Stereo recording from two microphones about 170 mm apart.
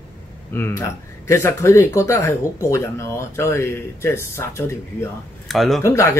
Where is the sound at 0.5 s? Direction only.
15° left (ahead or behind).